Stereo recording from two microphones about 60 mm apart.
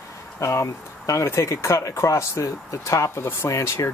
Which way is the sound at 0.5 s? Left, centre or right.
Left.